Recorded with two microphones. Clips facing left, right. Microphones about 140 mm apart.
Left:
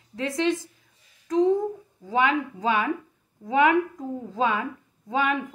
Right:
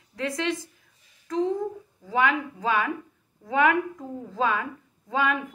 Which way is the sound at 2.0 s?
20° left (ahead or behind).